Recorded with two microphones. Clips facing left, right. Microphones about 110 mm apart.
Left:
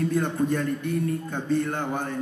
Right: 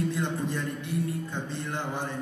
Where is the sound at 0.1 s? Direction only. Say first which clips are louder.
Left 6 dB; 50° left (ahead or behind).